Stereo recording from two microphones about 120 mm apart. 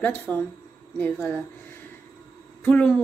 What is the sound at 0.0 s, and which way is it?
A woman's voice, 10° left (ahead or behind).